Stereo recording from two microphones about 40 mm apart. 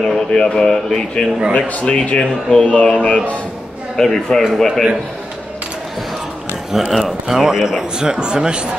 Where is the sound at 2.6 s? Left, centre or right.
Left.